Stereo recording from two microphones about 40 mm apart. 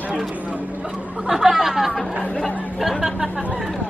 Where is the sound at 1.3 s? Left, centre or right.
Centre.